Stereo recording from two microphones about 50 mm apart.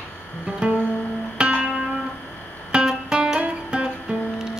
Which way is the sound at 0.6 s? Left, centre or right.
Right.